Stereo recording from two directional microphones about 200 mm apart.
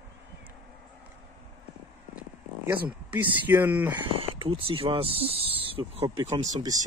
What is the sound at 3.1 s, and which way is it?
Speech, 10° right (ahead or behind).